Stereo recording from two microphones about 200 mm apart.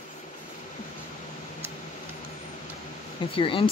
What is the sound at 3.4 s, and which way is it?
Speech, 25° left (ahead or behind).